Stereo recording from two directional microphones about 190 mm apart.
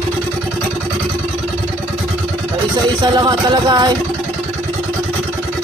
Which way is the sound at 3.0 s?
20° right (ahead or behind).